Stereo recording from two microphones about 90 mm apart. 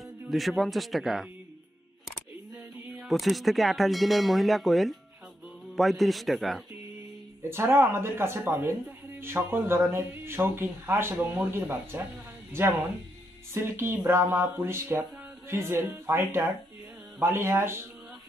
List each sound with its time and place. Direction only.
0.3 s speech: centre (ahead or behind)
3.0 s speech: centre (ahead or behind)
7.4 s speech: 25° right (ahead or behind)
13.5 s speech: 25° right (ahead or behind)